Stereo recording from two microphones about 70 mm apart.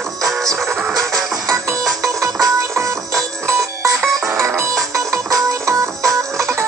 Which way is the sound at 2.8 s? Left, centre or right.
Right.